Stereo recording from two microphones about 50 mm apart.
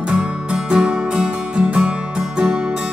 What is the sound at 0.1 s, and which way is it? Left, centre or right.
Music, centre.